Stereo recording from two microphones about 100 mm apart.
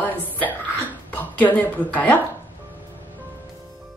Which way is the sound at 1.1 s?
15° left (ahead or behind).